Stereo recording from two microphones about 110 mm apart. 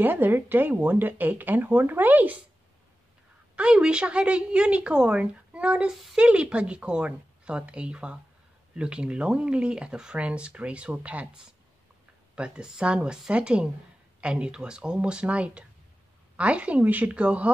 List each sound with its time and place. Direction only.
0.0 s a woman's voice: 15° right (ahead or behind)
3.5 s a woman's voice: 10° right (ahead or behind)